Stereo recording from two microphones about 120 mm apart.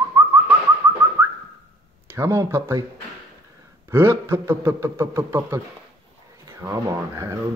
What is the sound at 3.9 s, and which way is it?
Speech, 20° right (ahead or behind).